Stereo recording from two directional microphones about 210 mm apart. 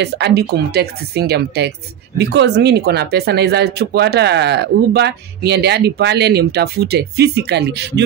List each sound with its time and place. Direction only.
0.0 s speech: 50° right (ahead or behind)